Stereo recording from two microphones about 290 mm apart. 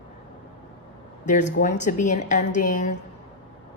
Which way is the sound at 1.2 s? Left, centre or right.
Left.